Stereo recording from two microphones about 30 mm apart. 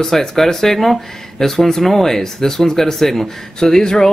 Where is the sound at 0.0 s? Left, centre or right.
Centre.